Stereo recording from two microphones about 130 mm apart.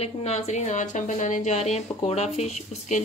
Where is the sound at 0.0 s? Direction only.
55° left (ahead or behind).